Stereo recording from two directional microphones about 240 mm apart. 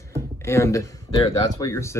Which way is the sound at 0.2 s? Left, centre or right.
Centre.